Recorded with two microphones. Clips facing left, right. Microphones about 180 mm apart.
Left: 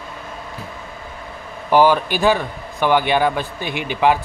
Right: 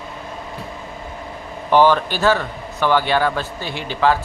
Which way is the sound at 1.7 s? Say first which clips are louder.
Even; 10° left (ahead or behind).